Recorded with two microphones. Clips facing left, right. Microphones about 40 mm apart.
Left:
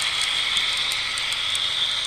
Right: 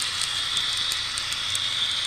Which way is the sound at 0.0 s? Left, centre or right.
Left.